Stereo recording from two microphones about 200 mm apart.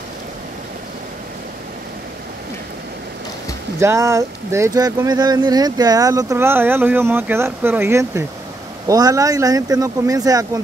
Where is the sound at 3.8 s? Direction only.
15° right (ahead or behind).